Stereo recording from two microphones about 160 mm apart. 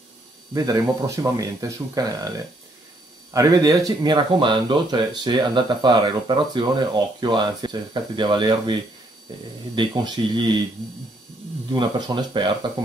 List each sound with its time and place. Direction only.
0.6 s speech: 20° right (ahead or behind)
9.8 s speech: 25° right (ahead or behind)
11.7 s speech: 25° right (ahead or behind)